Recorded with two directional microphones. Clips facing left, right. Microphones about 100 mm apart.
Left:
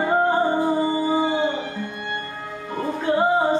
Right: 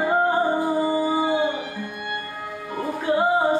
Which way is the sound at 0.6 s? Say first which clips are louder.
Left 1 dB; 20° left (ahead or behind).